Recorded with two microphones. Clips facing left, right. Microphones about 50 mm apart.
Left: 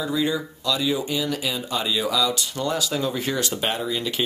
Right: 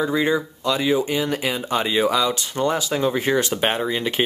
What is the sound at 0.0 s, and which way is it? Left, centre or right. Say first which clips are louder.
Speech: right 4 dB; right.